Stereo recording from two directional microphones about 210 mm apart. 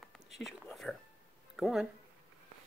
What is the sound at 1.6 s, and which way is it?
Speech, 5° right (ahead or behind).